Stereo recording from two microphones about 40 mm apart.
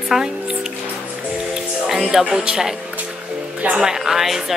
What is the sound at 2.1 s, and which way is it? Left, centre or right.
Speech, centre.